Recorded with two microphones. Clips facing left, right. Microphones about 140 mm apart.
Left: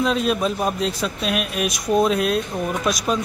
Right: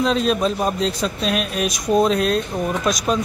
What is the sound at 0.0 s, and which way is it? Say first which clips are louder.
Speech: right 2 dB; 5° left (ahead or behind).